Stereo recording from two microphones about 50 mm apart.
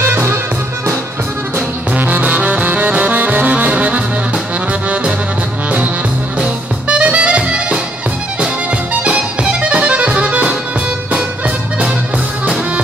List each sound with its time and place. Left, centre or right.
0.1 s music: right
2.0 s music: right
6.4 s music: right
9.0 s music: right